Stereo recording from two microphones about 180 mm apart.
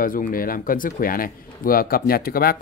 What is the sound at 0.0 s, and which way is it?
Speech, 50° left (ahead or behind).